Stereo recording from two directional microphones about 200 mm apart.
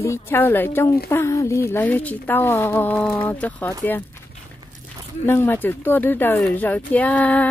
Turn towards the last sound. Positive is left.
turn(degrees=10)  # may be behind; listen again after turning